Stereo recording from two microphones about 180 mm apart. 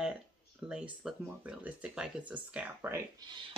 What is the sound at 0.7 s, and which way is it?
Speech, 5° right (ahead or behind).